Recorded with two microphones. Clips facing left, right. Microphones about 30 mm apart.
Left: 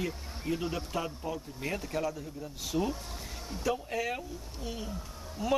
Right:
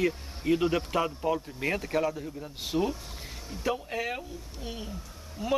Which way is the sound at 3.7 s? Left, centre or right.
Right.